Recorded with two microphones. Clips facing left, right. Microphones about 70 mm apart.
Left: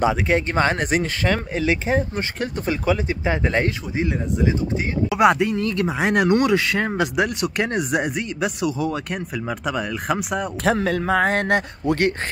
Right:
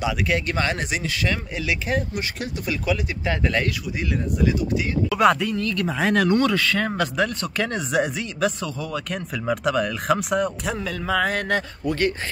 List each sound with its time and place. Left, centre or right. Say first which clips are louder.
0.0 s a man's voice: left 4 dB; left
0.7 s a man's voice: left 5 dB; left
5.1 s speech: left 2 dB; centre
8.0 s speech: right 1 dB; centre
8.6 s speech: left 6 dB; left
9.1 s speech: right 1 dB; centre
10.6 s a man's voice: left 7 dB; left